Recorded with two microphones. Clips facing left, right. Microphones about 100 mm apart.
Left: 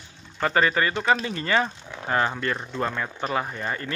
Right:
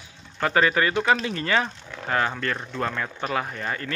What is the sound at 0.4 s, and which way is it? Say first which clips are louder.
Speech: right 1 dB; centre (ahead or behind).